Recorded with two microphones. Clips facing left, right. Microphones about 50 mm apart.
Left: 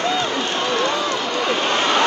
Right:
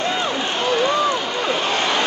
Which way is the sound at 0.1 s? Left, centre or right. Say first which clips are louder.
Left 1 dB; centre.